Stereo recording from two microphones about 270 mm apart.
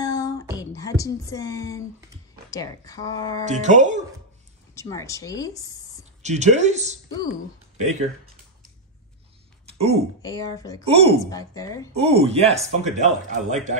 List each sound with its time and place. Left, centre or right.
0.0 s a sound: centre
0.6 s a woman's voice: centre
3.4 s speech: right
4.7 s speech: centre
6.2 s speech: right
9.7 s a sound: right
10.2 s a woman's voice: centre
10.9 s speech: right
11.2 s a woman's voice: centre
11.9 s speech: right